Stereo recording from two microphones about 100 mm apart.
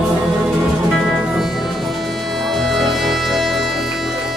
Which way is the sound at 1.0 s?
5° right (ahead or behind).